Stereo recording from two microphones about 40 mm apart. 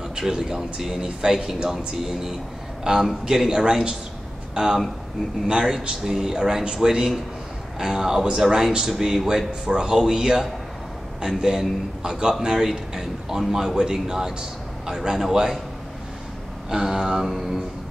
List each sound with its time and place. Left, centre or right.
0.3 s speech: centre
9.5 s speech: centre
16.7 s speech: centre